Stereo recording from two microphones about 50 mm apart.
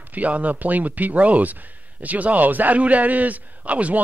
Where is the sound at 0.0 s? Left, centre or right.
Right.